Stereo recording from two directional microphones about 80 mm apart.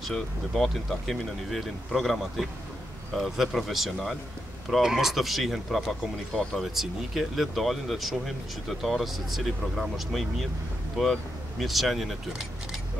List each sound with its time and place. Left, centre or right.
0.0 s speech: centre